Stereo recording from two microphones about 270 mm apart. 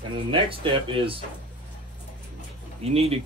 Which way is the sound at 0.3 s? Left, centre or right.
Centre.